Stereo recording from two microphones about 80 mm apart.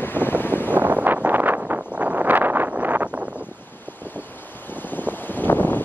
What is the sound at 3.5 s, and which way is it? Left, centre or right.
Vehicle, left.